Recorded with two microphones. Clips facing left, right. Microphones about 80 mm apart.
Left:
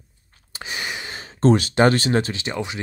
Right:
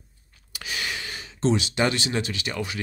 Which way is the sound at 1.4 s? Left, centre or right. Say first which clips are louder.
Left 7 dB; left.